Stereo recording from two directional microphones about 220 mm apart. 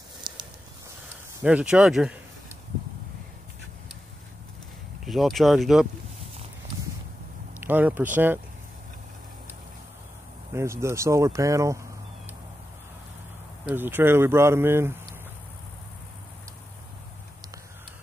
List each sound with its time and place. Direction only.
0.3 s a sound: 20° right (ahead or behind)
1.4 s speech: 5° right (ahead or behind)
5.0 s speech: centre (ahead or behind)
7.6 s speech: 10° right (ahead or behind)
10.5 s speech: 15° right (ahead or behind)
13.7 s speech: 10° right (ahead or behind)